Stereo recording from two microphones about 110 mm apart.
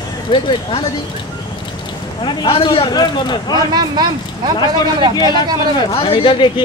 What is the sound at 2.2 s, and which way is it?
Speech, 50° left (ahead or behind).